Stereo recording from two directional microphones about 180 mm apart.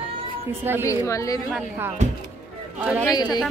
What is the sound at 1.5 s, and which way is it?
A woman's voice, 10° right (ahead or behind).